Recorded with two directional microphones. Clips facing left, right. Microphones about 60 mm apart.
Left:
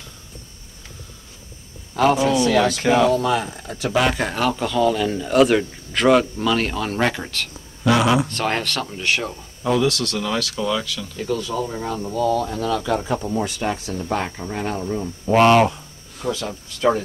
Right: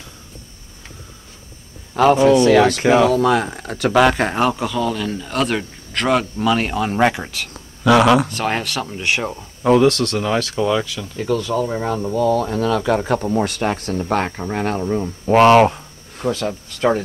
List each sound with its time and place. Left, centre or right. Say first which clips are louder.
2.0 s speech: right 5 dB; right
2.8 s speech: right 3 dB; centre
3.1 s speech: right 3 dB; right
4.0 s speech: right 6 dB; right
4.5 s speech: left 1 dB; centre
6.4 s speech: right 3 dB; centre
7.8 s speech: right 5 dB; right
8.3 s speech: right 1 dB; centre
8.9 s speech: right 3 dB; right
9.6 s speech: right 6 dB; right
11.1 s speech: right 5 dB; right